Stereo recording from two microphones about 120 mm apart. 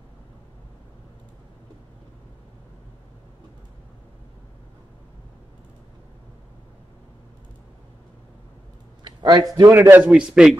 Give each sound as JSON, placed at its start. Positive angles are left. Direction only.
{"t": 9.0, "sound": "speech", "side_deg": -35}
{"t": 9.8, "sound": "a man's voice", "side_deg": -15}